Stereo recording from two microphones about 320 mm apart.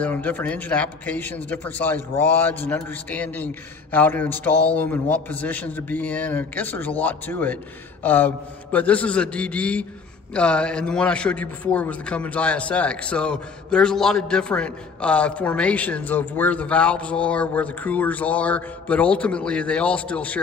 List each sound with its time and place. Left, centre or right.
0.0 s a man's voice: centre
8.0 s mantra: centre
8.7 s a man's voice: centre